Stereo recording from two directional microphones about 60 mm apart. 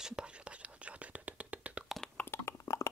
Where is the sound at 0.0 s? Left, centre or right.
Centre.